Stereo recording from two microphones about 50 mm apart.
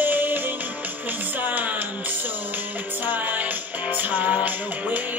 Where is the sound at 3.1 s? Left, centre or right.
Right.